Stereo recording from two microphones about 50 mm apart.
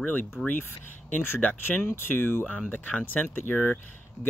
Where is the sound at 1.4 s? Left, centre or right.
Left.